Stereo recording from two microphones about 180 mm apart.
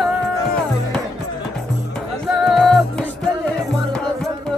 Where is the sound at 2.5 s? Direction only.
Centre (ahead or behind).